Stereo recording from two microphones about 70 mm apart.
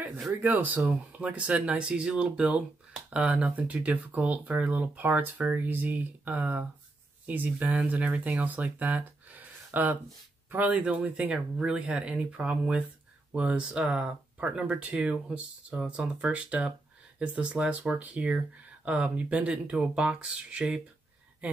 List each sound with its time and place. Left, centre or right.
0.4 s speech: right
15.8 s speech: centre
16.3 s speech: centre